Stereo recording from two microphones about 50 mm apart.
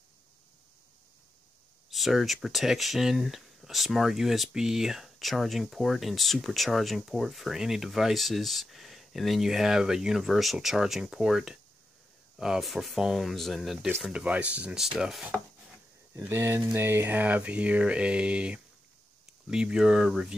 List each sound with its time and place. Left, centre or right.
1.9 s speech: centre
14.0 s speech: centre
14.8 s speech: centre
16.2 s speech: right; by 20.3 s centre